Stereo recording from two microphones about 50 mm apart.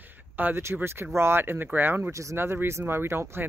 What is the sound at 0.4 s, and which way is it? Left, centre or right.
Speech, right.